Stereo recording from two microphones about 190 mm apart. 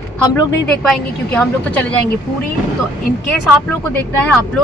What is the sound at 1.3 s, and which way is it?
Speech, 5° left (ahead or behind).